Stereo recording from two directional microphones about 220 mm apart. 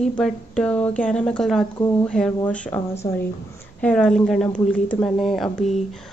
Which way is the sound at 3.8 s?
5° left (ahead or behind).